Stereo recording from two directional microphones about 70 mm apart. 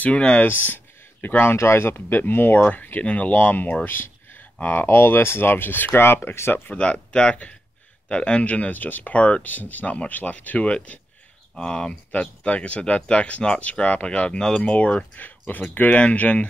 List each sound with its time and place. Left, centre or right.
0.0 s speech: centre
0.7 s a sound: left
1.6 s speech: left
6.7 s speech: centre